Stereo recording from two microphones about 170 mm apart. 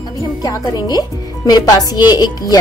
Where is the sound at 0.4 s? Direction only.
25° left (ahead or behind).